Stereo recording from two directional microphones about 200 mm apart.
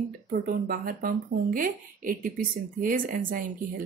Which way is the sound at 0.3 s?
45° right (ahead or behind).